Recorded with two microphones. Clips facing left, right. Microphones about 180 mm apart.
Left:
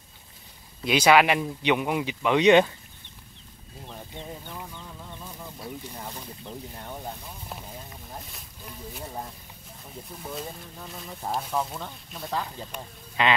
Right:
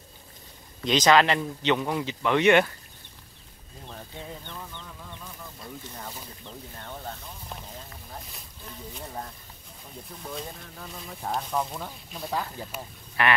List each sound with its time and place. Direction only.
0.8 s speech: 10° left (ahead or behind)
4.5 s speech: 5° left (ahead or behind)
13.2 s speech: 20° left (ahead or behind)